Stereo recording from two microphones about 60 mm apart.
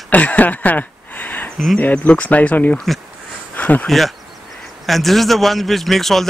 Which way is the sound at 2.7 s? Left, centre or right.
Centre.